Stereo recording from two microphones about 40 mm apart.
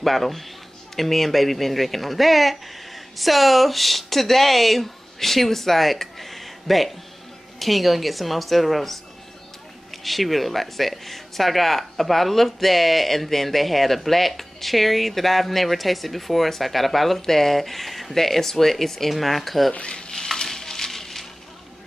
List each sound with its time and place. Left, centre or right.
0.0 s speech: centre
19.7 s speech: left
20.1 s frying: centre